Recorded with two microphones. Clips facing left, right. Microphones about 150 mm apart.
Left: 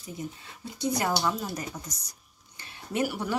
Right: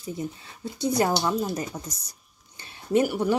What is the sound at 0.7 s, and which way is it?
Speech, 30° right (ahead or behind).